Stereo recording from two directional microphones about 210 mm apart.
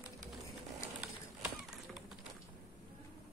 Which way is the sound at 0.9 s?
5° right (ahead or behind).